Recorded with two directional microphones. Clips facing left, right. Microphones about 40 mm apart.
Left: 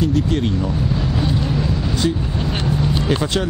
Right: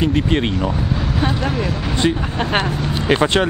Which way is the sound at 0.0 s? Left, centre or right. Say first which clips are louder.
Right 1 dB; right.